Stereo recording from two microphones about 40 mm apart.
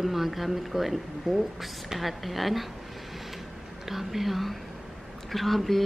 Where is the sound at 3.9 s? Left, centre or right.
Centre.